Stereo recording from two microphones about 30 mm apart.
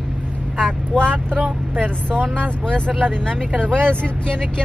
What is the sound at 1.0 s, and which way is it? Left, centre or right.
Speech, left.